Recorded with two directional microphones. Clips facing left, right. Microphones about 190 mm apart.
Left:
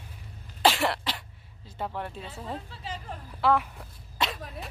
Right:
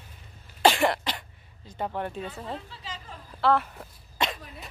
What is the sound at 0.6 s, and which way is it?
Cough, centre (ahead or behind).